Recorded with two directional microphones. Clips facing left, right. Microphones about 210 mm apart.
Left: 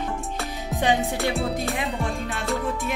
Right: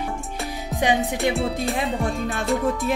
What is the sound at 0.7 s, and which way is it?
Speech, 15° right (ahead or behind).